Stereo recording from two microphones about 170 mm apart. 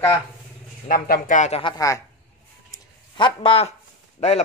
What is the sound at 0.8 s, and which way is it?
Speech, 60° left (ahead or behind).